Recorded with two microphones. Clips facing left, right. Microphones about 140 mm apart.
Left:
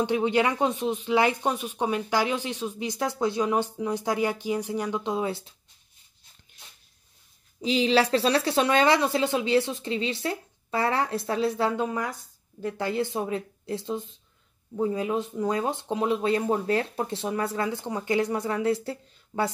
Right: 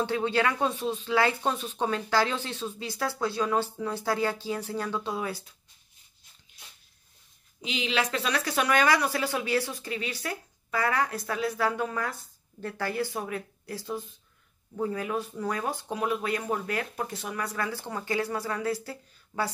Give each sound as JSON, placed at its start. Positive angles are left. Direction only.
{"t": 0.0, "sound": "speech", "side_deg": 20}
{"t": 7.6, "sound": "speech", "side_deg": 35}